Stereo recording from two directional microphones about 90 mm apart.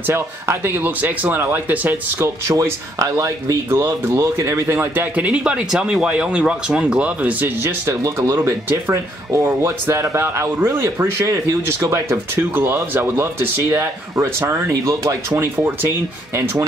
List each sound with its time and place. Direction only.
0.0 s speech: 25° right (ahead or behind)
2.1 s speech: 30° right (ahead or behind)
15.5 s speech: 20° right (ahead or behind)